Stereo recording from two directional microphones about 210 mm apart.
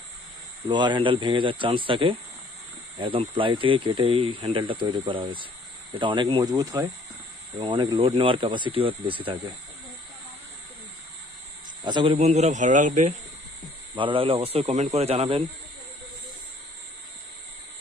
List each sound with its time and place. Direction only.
0.7 s speech: 20° right (ahead or behind)
11.8 s speech: 20° right (ahead or behind)
13.9 s speech: 25° right (ahead or behind)